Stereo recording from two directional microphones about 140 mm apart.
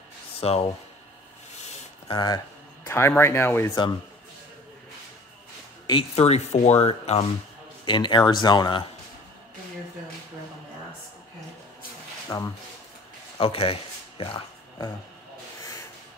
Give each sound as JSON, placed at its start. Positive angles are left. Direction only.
{"t": 0.4, "sound": "speech", "side_deg": 45}
{"t": 2.1, "sound": "speech", "side_deg": 30}
{"t": 5.9, "sound": "speech", "side_deg": 40}
{"t": 7.8, "sound": "speech", "side_deg": 35}
{"t": 12.3, "sound": "speech", "side_deg": 25}
{"t": 13.4, "sound": "speech", "side_deg": 40}